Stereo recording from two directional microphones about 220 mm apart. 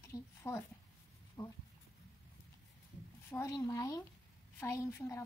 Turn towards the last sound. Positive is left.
turn(degrees=15)  # may be behind; listen again after turning